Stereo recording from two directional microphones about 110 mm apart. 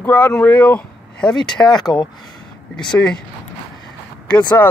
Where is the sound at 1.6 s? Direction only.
40° left (ahead or behind).